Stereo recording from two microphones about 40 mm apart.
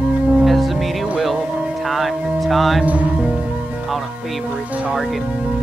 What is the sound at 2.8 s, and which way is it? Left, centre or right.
Music, right.